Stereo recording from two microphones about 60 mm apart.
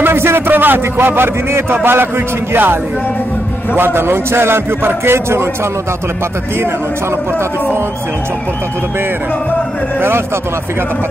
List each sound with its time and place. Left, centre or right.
0.0 s a man's voice: right
9.9 s a man's voice: right